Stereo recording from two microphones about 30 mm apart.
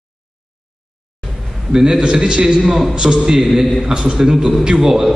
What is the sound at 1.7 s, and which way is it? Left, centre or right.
A man's voice, centre.